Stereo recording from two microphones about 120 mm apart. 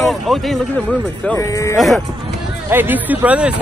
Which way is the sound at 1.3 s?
25° left (ahead or behind).